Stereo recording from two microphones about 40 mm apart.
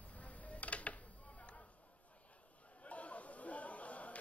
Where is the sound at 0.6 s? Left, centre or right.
Left.